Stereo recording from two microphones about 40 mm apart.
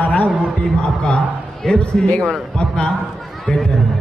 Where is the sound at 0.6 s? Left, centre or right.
Left.